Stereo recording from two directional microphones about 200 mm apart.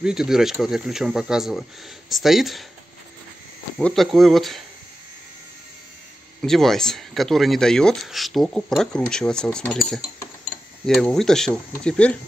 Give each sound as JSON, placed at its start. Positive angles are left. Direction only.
{"t": 0.0, "sound": "speech", "side_deg": -5}
{"t": 3.7, "sound": "speech", "side_deg": 0}
{"t": 6.4, "sound": "speech", "side_deg": 0}